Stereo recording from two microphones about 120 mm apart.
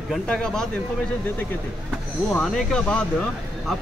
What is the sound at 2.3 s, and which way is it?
Speech, 5° left (ahead or behind).